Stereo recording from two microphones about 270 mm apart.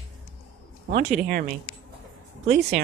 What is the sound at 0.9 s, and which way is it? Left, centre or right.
Speech, right.